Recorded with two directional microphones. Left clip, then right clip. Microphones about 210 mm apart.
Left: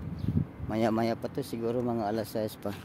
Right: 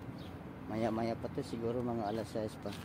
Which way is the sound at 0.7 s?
60° left (ahead or behind).